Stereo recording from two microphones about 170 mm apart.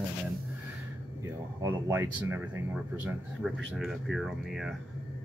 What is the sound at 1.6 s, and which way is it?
Speech, 15° right (ahead or behind).